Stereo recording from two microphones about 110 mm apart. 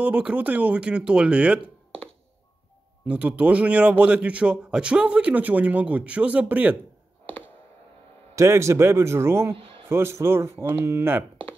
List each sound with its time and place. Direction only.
0.0 s a man's voice: 15° right (ahead or behind)
3.1 s a man's voice: 10° right (ahead or behind)
7.2 s a sound: 15° left (ahead or behind)
8.4 s speech: 25° right (ahead or behind)